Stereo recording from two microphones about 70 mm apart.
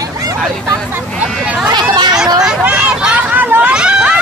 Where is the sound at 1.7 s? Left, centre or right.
Right.